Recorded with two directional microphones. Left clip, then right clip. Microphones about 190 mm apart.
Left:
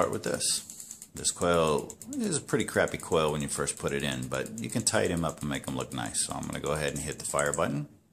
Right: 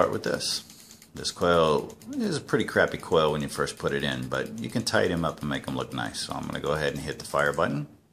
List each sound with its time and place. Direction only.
0.0 s speech: 5° left (ahead or behind)